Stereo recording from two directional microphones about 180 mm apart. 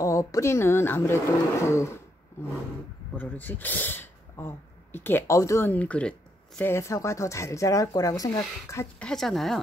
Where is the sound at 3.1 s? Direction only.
10° left (ahead or behind).